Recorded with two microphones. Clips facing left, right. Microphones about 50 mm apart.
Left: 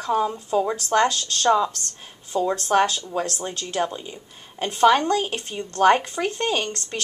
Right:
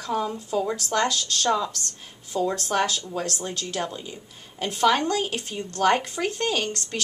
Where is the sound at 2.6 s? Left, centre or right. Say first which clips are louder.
Left 5 dB; centre.